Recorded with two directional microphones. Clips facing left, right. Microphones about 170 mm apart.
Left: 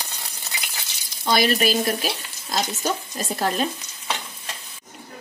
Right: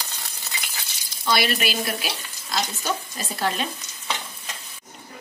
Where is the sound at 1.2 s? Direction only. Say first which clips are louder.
Left 3 dB; 40° left (ahead or behind).